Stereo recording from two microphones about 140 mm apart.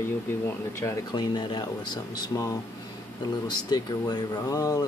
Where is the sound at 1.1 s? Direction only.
30° left (ahead or behind).